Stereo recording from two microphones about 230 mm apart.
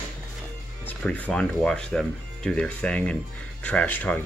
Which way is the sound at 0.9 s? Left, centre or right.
Centre.